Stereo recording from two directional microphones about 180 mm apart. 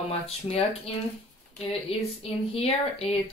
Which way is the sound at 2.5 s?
35° left (ahead or behind).